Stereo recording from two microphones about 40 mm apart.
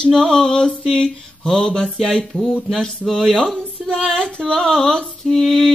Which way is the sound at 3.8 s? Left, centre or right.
Centre.